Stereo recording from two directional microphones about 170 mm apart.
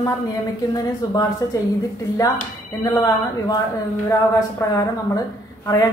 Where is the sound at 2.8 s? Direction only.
20° left (ahead or behind).